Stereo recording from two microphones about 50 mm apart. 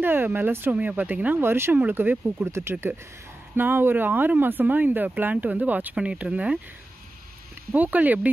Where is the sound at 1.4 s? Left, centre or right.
Right.